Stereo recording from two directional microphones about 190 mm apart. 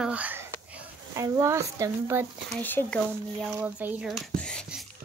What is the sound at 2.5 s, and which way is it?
Speech, 10° left (ahead or behind).